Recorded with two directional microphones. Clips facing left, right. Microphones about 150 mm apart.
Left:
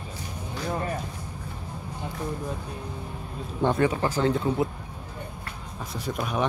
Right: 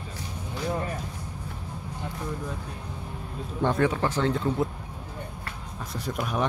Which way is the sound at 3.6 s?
5° left (ahead or behind).